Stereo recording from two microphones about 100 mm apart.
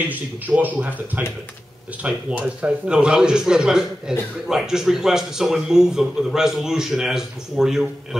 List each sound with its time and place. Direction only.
0.0 s a man's voice: 15° right (ahead or behind)